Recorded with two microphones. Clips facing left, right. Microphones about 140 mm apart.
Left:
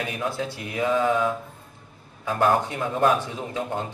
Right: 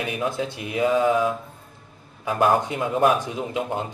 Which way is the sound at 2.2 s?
15° right (ahead or behind).